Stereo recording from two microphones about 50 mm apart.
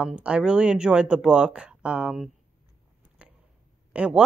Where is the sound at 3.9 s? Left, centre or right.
Right.